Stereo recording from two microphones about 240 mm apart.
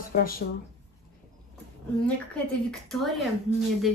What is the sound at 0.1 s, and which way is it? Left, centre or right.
Speech, left.